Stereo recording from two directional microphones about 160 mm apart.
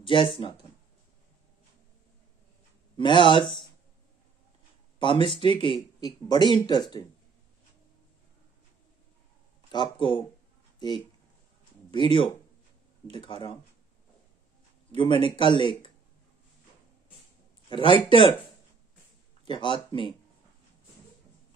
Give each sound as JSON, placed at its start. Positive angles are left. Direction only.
{"t": 0.0, "sound": "speech", "side_deg": 35}
{"t": 3.0, "sound": "speech", "side_deg": 30}
{"t": 5.3, "sound": "speech", "side_deg": 30}
{"t": 9.7, "sound": "speech", "side_deg": 30}
{"t": 11.9, "sound": "speech", "side_deg": 30}
{"t": 14.9, "sound": "a man's voice", "side_deg": 30}
{"t": 17.6, "sound": "speech", "side_deg": 30}
{"t": 19.4, "sound": "speech", "side_deg": 30}